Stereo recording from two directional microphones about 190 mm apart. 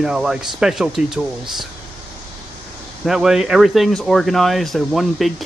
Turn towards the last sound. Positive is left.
turn(degrees=0)  # may be behind; listen again after turning